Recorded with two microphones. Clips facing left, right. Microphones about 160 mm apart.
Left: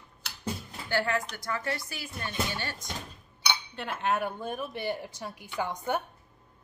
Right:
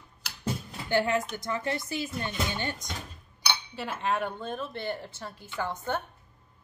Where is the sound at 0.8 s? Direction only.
20° right (ahead or behind).